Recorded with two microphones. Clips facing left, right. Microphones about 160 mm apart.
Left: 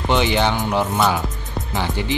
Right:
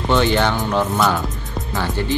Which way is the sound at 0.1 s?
15° left (ahead or behind).